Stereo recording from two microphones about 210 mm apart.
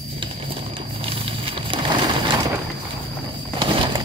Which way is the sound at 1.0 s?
25° right (ahead or behind).